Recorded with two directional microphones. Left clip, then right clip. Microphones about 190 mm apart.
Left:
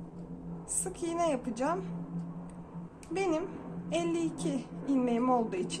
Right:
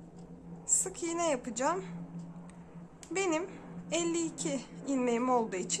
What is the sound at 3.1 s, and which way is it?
A woman's voice, 30° right (ahead or behind).